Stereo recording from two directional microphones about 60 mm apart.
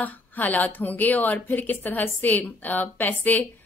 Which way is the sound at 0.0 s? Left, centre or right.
Left.